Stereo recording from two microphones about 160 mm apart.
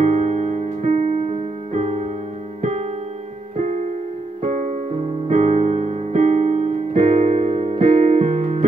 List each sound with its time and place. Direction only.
0.0 s music: 45° right (ahead or behind)
2.6 s keyboard: 45° right (ahead or behind)
4.4 s music: 50° right (ahead or behind)
5.3 s piano: 45° right (ahead or behind)